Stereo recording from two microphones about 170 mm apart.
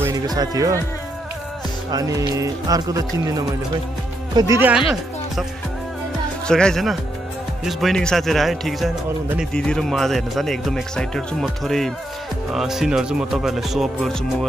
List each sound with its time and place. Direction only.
0.0 s speech: 20° right (ahead or behind)
1.9 s speech: 20° right (ahead or behind); by 14.1 s centre (ahead or behind)